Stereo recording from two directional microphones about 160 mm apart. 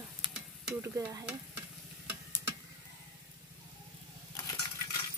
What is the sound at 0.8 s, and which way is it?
Stir, 20° right (ahead or behind).